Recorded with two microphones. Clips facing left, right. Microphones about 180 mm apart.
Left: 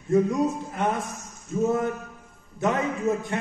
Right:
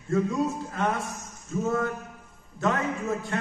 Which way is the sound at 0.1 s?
20° left (ahead or behind).